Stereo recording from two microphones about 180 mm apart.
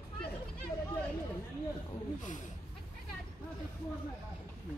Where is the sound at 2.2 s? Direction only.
45° left (ahead or behind).